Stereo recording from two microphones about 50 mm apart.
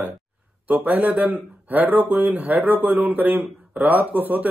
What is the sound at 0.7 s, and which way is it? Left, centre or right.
Speech, right.